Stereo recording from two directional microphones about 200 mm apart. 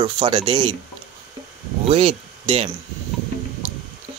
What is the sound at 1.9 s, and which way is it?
Speech, 30° right (ahead or behind).